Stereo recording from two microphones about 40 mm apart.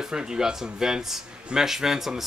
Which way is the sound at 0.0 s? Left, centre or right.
Centre.